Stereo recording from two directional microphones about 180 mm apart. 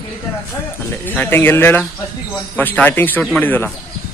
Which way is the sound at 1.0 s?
10° left (ahead or behind).